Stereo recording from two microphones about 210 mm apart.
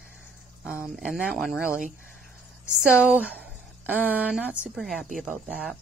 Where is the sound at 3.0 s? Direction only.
5° right (ahead or behind).